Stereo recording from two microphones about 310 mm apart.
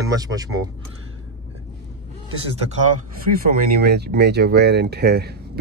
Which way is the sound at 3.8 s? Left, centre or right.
Right.